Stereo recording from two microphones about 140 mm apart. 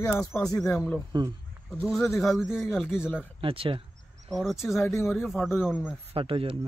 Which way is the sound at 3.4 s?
40° right (ahead or behind).